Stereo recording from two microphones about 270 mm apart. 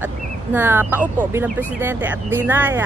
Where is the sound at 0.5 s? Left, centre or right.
Centre.